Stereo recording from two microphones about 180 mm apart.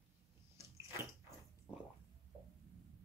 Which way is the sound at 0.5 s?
15° right (ahead or behind).